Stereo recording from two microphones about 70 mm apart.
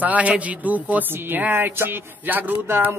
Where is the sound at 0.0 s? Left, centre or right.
Centre.